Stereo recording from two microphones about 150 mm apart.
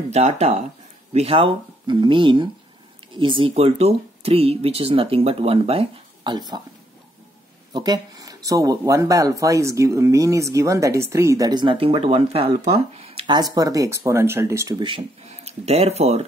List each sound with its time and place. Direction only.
0.1 s speech: 45° right (ahead or behind)
6.3 s speech: 30° right (ahead or behind)
7.7 s speech: 25° right (ahead or behind)
14.8 s speech: 30° right (ahead or behind)
15.2 s speech: 45° right (ahead or behind)